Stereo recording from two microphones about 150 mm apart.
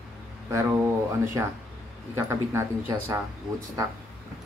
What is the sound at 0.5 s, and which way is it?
Speech, 20° right (ahead or behind).